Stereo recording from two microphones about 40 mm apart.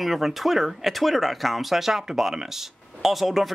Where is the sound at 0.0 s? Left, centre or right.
Centre.